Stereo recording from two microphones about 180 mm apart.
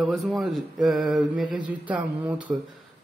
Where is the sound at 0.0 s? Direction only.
Centre (ahead or behind).